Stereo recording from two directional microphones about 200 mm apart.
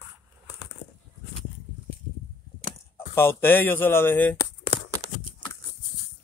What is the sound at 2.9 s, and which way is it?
Speech, 10° left (ahead or behind).